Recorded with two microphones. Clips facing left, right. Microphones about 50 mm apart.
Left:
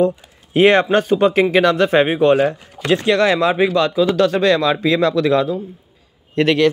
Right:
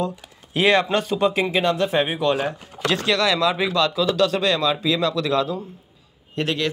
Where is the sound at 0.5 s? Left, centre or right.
Left.